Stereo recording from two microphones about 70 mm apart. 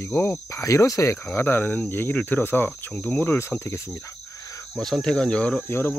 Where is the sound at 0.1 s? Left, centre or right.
Left.